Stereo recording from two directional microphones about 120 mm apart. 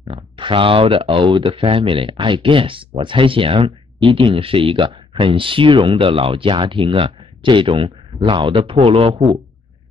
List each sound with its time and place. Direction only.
0.1 s speech: 45° right (ahead or behind)